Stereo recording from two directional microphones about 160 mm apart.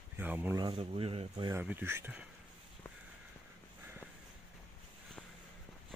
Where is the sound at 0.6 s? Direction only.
35° right (ahead or behind).